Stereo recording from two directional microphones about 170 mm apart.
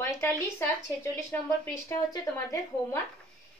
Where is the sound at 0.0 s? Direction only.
15° left (ahead or behind).